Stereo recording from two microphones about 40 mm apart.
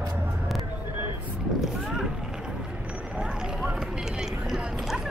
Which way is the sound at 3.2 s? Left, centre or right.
Right.